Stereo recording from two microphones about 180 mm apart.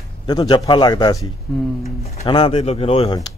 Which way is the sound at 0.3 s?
25° left (ahead or behind).